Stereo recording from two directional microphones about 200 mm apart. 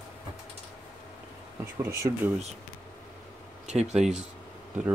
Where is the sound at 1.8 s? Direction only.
15° right (ahead or behind).